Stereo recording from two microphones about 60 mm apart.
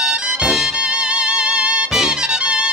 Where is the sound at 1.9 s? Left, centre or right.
Centre.